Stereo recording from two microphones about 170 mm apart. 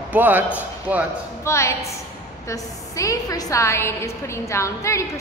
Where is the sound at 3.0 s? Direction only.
20° left (ahead or behind).